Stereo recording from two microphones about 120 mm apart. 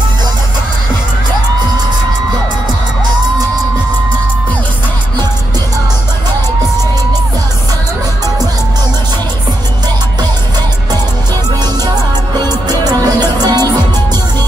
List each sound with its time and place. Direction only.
12.6 s music: 35° right (ahead or behind)